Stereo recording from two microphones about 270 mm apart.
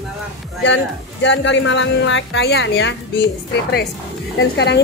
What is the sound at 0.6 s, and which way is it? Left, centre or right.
Speech, left.